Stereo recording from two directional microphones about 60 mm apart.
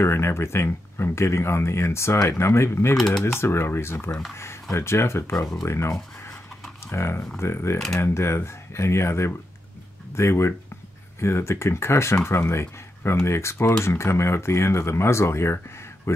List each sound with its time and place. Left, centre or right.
0.0 s speech: left
6.9 s speech: left